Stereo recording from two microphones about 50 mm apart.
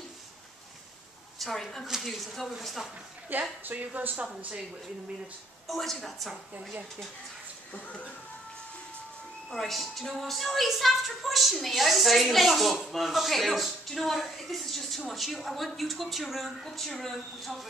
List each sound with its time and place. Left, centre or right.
1.4 s a woman's voice: centre
3.3 s speech: right
5.7 s speech: centre
7.8 s speech: left
9.5 s speech: centre